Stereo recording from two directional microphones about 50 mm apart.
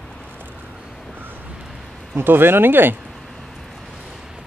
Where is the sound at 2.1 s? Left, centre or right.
Right.